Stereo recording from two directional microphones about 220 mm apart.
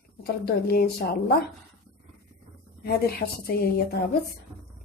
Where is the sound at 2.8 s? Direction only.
45° left (ahead or behind).